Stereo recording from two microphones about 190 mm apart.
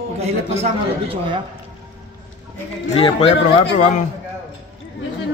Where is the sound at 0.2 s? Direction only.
35° right (ahead or behind).